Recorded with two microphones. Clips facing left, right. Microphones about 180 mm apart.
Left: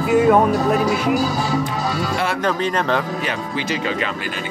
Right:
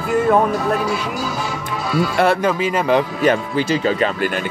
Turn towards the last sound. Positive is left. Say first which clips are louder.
# right 6 dB
turn(degrees=-40)  # may be behind; listen again after turning